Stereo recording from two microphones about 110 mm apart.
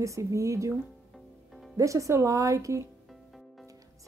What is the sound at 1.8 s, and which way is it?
A woman's voice, 30° right (ahead or behind).